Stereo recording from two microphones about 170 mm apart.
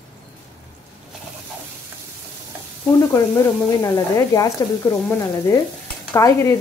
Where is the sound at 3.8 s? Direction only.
20° left (ahead or behind).